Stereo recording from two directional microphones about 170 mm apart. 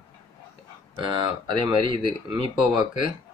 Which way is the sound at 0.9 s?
25° right (ahead or behind).